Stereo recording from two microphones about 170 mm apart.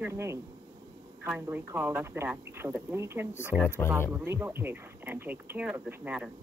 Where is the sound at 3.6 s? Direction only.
15° left (ahead or behind).